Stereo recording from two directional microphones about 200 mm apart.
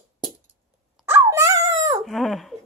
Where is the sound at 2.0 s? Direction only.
Centre (ahead or behind).